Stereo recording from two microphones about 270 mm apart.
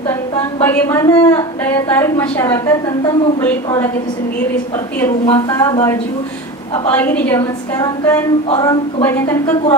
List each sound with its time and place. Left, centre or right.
0.6 s a woman's voice: centre
5.3 s a woman's voice: centre
7.0 s a woman's voice: centre